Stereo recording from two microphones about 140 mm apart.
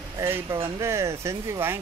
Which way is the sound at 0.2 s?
20° right (ahead or behind).